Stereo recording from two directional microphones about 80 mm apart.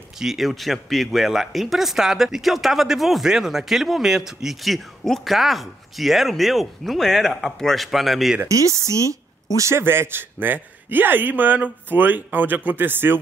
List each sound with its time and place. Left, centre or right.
0.2 s speech: centre
8.5 s a man's voice: right